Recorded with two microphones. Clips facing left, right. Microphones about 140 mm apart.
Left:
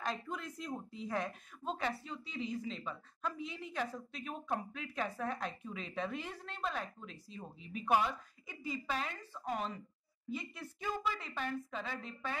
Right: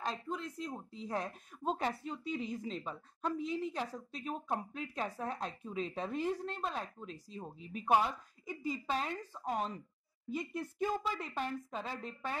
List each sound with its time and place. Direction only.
0.0 s a woman's voice: 30° right (ahead or behind)